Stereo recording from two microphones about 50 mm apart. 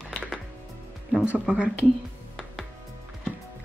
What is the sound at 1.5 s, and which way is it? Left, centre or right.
Speech, right.